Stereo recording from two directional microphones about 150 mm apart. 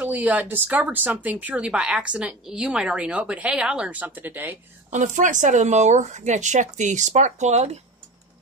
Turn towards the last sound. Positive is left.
turn(degrees=-50)  # may be behind; listen again after turning